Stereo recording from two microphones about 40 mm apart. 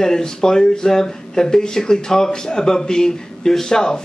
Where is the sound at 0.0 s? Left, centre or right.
Centre.